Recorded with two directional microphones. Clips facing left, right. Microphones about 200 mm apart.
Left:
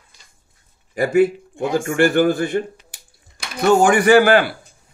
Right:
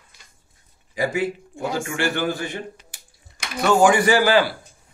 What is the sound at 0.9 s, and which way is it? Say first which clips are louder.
A man's voice: left 8 dB; 55° left (ahead or behind).